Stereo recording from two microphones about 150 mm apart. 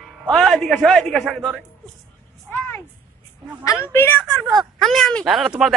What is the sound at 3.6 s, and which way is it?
Speech, 20° left (ahead or behind).